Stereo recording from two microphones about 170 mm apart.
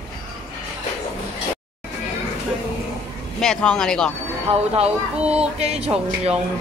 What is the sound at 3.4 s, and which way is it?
Speech, 5° left (ahead or behind).